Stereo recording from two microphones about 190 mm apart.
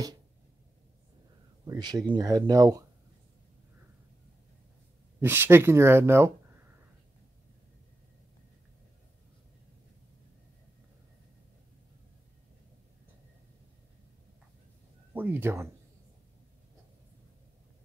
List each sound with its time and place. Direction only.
1.7 s speech: 20° right (ahead or behind)
5.2 s speech: 10° right (ahead or behind)
15.1 s speech: 10° right (ahead or behind)